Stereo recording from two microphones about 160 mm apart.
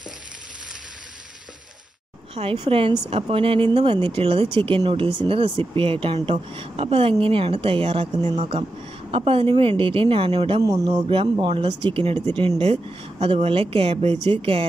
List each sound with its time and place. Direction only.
2.3 s speech: 40° right (ahead or behind)
10.6 s speech: 20° right (ahead or behind)
10.9 s speech: 35° right (ahead or behind)